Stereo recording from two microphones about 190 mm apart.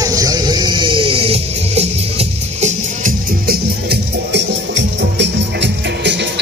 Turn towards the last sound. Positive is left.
turn(degrees=-65)  # may be behind; listen again after turning